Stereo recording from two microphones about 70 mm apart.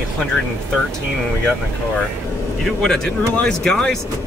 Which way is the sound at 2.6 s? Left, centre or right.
Centre.